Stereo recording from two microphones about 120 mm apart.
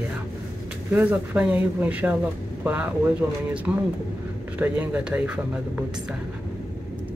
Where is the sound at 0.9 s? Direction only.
15° right (ahead or behind).